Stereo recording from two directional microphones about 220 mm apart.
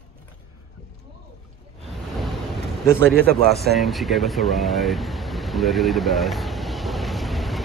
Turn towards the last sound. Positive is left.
turn(degrees=0)  # may be behind; listen again after turning